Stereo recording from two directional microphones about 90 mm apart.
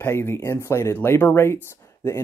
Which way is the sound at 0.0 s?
25° left (ahead or behind).